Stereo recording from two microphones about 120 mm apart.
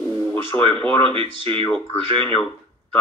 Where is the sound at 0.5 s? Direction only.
45° right (ahead or behind).